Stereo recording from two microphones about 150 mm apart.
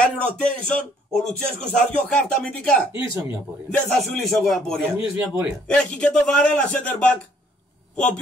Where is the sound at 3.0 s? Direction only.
15° right (ahead or behind).